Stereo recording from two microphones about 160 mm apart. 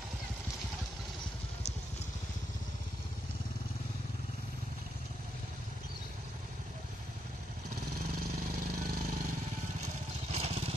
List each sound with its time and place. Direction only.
7.7 s vehicle: 70° right (ahead or behind)
10.3 s vehicle: 40° right (ahead or behind)